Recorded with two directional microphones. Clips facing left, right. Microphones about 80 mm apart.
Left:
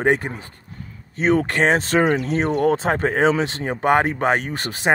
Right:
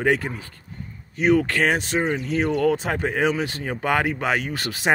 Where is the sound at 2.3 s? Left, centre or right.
Left.